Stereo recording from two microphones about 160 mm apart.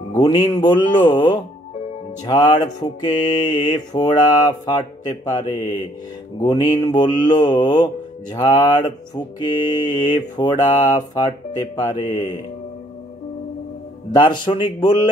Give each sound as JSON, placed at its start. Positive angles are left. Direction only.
{"t": 0.1, "sound": "speech", "side_deg": 25}
{"t": 6.4, "sound": "speech", "side_deg": 25}
{"t": 14.1, "sound": "speech", "side_deg": 30}